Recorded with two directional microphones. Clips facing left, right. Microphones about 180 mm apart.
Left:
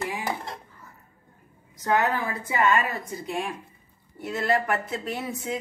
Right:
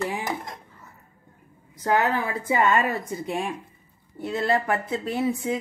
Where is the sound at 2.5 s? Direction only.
25° right (ahead or behind).